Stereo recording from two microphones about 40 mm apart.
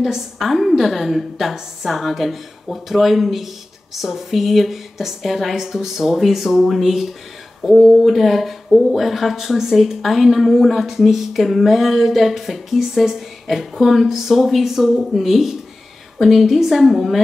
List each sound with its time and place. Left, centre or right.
0.0 s speech: centre